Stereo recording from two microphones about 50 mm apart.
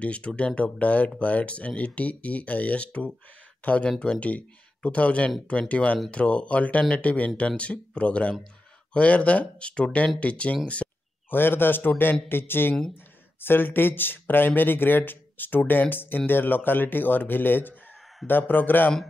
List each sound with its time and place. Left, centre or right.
0.0 s speech: left
10.8 s a sound: left
11.2 s speech: left